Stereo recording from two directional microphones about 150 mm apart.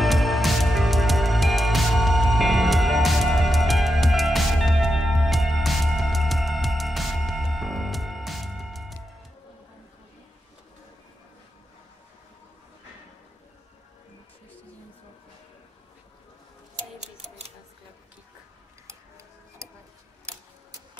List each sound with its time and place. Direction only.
0.0 s music: centre (ahead or behind)
16.7 s tick-tock: 50° right (ahead or behind)
18.9 s tick-tock: 20° right (ahead or behind)